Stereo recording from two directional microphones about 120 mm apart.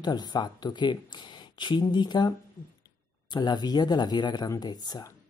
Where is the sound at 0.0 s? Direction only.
35° left (ahead or behind).